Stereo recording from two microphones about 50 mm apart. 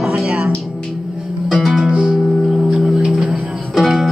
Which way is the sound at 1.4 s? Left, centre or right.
Centre.